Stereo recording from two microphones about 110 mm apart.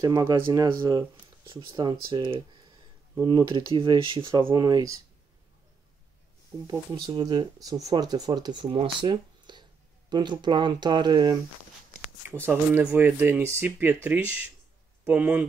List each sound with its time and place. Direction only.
0.0 s speech: 35° right (ahead or behind); by 4.6 s 50° right (ahead or behind)
4.6 s speech: 35° right (ahead or behind)
7.1 s speech: 40° right (ahead or behind)
12.4 s speech: 20° right (ahead or behind)
15.0 s speech: 15° right (ahead or behind)